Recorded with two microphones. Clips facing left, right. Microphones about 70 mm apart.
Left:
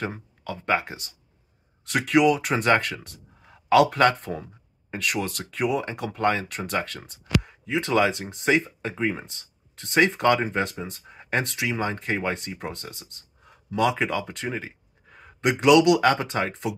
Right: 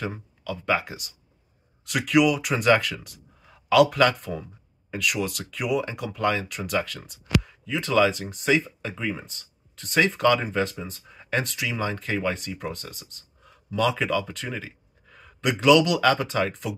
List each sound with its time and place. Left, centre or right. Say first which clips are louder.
0.4 s speech: even; left